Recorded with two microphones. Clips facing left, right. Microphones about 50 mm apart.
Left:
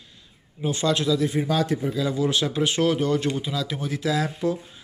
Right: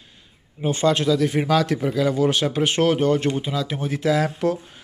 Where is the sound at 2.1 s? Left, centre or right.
Right.